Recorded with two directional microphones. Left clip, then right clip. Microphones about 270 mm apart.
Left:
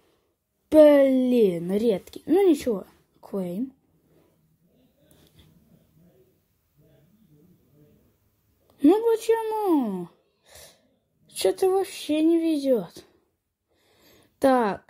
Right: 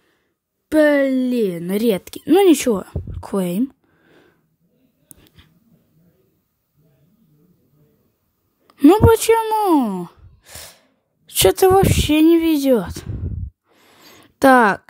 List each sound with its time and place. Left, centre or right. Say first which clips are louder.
0.7 s speech: even; centre
8.6 s a woman's voice: right 8 dB; right
13.7 s a sound: right 12 dB; right